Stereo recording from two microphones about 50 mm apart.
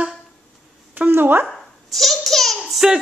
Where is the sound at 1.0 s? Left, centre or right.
Right.